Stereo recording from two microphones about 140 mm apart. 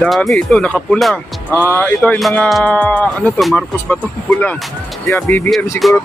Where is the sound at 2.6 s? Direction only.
10° left (ahead or behind).